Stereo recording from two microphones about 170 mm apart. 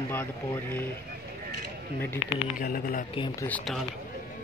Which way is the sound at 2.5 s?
55° left (ahead or behind).